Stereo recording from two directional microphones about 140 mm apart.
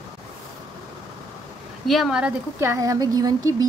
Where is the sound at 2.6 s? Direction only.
20° right (ahead or behind).